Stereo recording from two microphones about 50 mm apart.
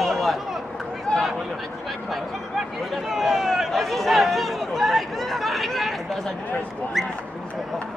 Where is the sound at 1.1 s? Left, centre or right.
Centre.